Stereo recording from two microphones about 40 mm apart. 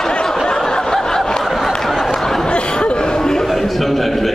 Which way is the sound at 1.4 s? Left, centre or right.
Centre.